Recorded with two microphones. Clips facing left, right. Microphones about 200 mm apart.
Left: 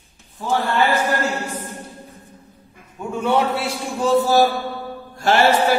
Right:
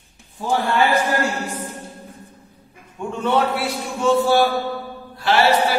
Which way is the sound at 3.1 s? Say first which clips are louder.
Left 1 dB; 10° left (ahead or behind).